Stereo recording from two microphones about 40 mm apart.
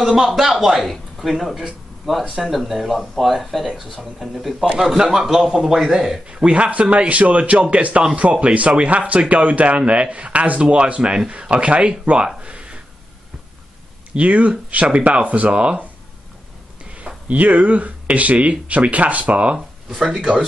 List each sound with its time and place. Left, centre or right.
0.0 s speech: centre
0.8 s a sound: centre
1.4 s speech: centre
4.7 s speech: centre
6.2 s a man's voice: right
12.4 s a sound: right
14.1 s a man's voice: right
16.9 s speech: right
19.9 s speech: centre